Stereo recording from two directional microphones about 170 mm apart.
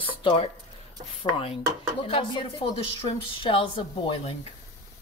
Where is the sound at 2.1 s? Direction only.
30° left (ahead or behind).